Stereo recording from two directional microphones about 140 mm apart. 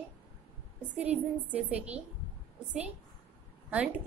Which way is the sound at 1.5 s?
10° right (ahead or behind).